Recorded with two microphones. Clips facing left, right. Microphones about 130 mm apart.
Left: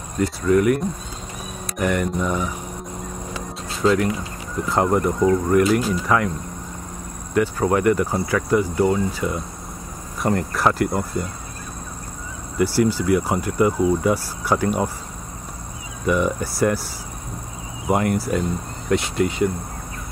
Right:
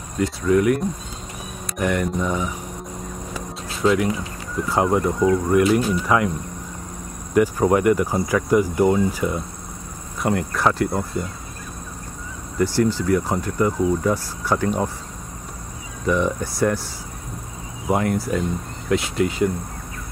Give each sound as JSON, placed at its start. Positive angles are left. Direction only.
{"t": 0.2, "sound": "speech", "side_deg": 0}
{"t": 3.8, "sound": "speech", "side_deg": -5}
{"t": 7.3, "sound": "speech", "side_deg": -15}
{"t": 10.2, "sound": "speech", "side_deg": 0}
{"t": 12.5, "sound": "speech", "side_deg": 10}
{"t": 16.1, "sound": "speech", "side_deg": 5}
{"t": 17.8, "sound": "speech", "side_deg": 5}